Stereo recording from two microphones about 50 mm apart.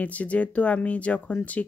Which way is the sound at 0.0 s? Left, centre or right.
Left.